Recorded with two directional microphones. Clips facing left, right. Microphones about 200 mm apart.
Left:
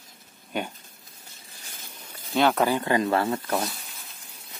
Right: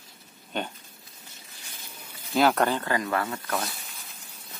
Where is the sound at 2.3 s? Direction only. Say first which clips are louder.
Even; centre (ahead or behind).